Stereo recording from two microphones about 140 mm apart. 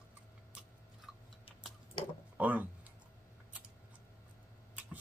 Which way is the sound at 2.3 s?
10° right (ahead or behind).